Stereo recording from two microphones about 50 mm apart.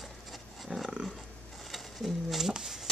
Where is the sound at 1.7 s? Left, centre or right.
Centre.